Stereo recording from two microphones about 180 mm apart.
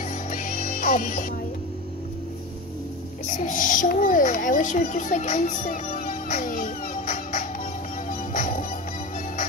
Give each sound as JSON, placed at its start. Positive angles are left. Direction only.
{"t": 0.3, "sound": "music", "side_deg": 45}
{"t": 3.3, "sound": "a sound", "side_deg": 45}
{"t": 8.1, "sound": "music", "side_deg": 45}